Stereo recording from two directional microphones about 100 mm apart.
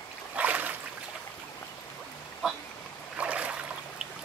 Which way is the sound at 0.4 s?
15° right (ahead or behind).